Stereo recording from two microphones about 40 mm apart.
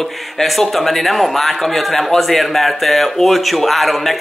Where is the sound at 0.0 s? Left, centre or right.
Centre.